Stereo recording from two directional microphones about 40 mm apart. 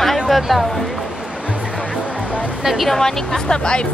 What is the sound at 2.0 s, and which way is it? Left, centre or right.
Music, right.